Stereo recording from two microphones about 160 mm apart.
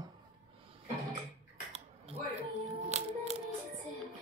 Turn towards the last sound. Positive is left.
turn(degrees=-40)  # may be behind; listen again after turning